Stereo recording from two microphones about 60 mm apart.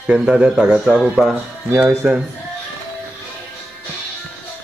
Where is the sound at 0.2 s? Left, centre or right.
Centre.